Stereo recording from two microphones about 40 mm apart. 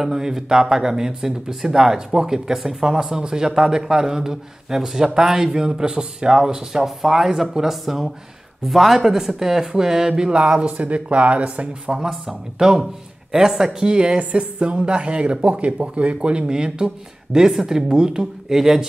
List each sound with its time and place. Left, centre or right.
0.0 s speech: centre
10.4 s speech: right
11.9 s speech: centre
13.7 s speech: right